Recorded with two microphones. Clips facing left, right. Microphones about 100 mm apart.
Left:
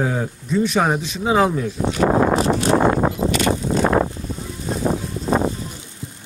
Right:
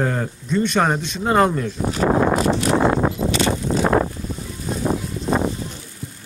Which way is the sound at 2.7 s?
45° left (ahead or behind).